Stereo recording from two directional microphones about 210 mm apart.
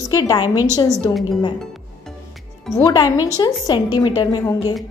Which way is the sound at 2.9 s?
15° left (ahead or behind).